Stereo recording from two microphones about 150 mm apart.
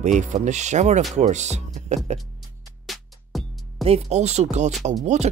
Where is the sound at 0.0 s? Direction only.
50° right (ahead or behind).